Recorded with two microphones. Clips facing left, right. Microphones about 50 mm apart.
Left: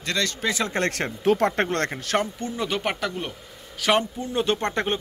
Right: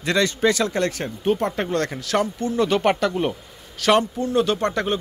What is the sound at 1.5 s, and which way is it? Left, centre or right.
Speech, left.